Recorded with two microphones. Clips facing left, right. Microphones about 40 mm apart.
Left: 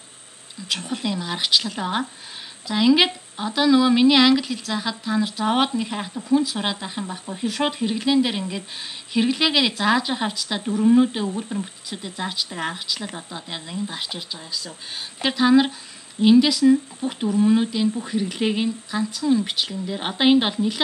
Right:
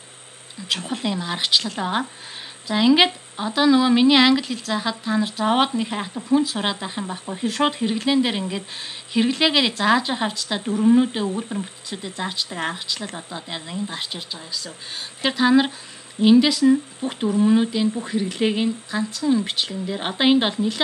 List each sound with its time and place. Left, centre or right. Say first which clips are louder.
0.6 s speech: right 1 dB; centre